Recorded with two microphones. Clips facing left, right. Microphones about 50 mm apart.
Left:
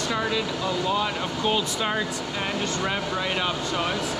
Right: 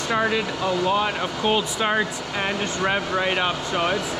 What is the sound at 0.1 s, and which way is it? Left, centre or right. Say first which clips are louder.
Speech: right 6 dB; right.